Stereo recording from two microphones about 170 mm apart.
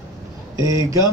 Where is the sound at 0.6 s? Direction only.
20° right (ahead or behind).